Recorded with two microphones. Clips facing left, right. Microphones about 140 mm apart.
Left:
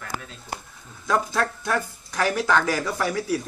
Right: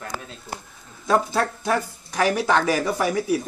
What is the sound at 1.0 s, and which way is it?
A man's voice, 25° right (ahead or behind).